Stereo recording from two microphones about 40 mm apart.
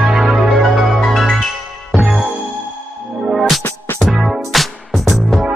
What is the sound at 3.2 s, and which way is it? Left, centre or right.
Music, centre.